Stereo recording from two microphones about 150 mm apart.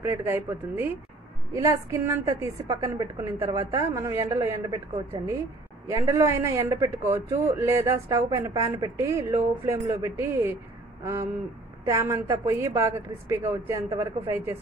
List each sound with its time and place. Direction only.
0.0 s a man's voice: 15° right (ahead or behind)
11.8 s a man's voice: 20° right (ahead or behind)